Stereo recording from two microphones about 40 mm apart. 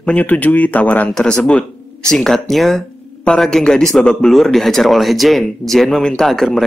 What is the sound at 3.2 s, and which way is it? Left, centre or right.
A man's voice, centre.